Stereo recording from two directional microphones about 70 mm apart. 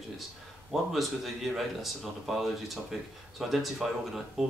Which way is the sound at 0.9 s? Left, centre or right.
Centre.